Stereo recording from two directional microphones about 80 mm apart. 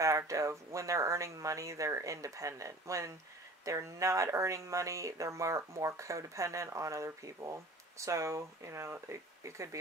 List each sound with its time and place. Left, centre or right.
0.0 s speech: right